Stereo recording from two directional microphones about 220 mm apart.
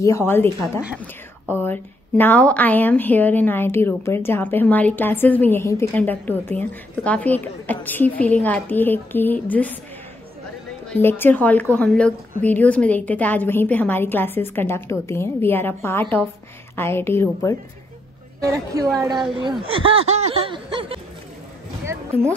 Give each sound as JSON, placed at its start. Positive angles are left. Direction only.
{"t": 0.0, "sound": "a woman's voice", "side_deg": 10}
{"t": 1.5, "sound": "a woman's voice", "side_deg": 10}
{"t": 10.9, "sound": "a woman's voice", "side_deg": 10}
{"t": 18.4, "sound": "a woman's voice", "side_deg": -15}